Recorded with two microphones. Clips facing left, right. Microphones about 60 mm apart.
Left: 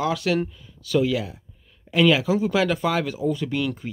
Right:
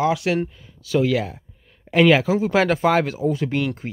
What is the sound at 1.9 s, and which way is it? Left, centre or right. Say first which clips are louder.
Speech: right 3 dB; right.